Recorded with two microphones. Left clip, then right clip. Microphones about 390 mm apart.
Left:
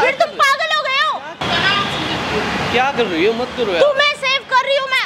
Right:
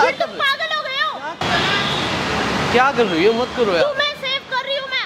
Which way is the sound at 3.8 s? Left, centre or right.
Left.